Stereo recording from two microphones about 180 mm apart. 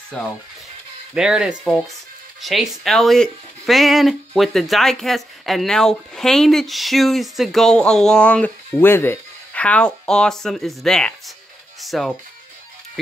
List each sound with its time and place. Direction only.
0.1 s speech: 5° left (ahead or behind)